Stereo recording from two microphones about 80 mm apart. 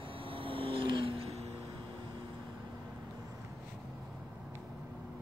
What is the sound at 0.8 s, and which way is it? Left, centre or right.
Vehicle, right.